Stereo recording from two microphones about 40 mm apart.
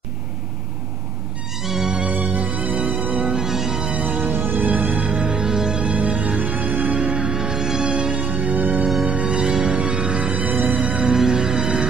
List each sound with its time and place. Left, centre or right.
1.6 s music: centre
2.0 s music: right
3.3 s music: centre
3.9 s music: right
4.3 s music: right
4.6 s music: right
4.9 s music: right
5.2 s music: centre
5.9 s music: right
7.0 s music: right
8.1 s music: right
9.2 s music: right
10.4 s music: right
11.0 s music: centre